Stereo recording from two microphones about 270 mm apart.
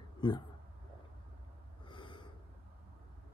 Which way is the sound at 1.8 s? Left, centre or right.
Centre.